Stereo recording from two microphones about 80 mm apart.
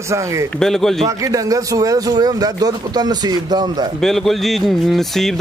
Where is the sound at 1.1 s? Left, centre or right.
Right.